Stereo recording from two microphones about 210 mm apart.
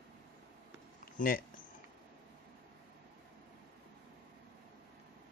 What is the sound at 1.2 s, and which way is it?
Speech, 40° left (ahead or behind).